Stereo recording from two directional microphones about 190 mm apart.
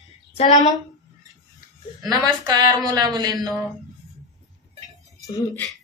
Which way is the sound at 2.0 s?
20° right (ahead or behind).